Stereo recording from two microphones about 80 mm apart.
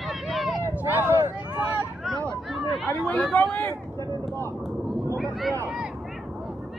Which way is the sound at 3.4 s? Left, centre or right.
Centre.